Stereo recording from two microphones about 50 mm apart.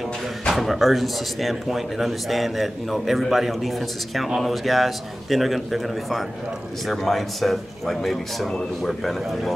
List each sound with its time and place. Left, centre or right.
0.5 s speech: centre